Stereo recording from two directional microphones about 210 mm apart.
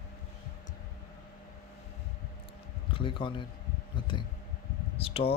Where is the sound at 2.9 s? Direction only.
25° left (ahead or behind).